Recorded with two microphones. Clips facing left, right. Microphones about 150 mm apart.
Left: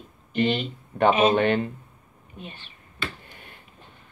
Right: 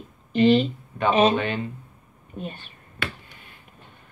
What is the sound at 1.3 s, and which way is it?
Speech, 55° left (ahead or behind).